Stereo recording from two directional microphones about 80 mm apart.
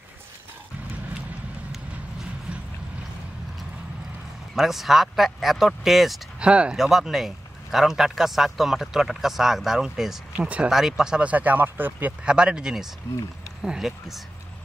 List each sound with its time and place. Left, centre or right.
4.6 s speech: centre
6.4 s speech: centre
12.3 s speech: centre